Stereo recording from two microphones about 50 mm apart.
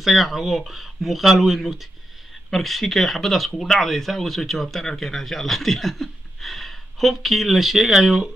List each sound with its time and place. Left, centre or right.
0.0 s speech: centre